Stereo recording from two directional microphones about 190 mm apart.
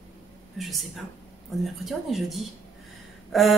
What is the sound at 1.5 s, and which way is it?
A woman's voice, centre (ahead or behind).